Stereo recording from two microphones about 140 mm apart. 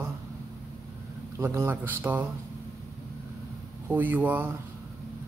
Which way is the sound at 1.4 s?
15° right (ahead or behind).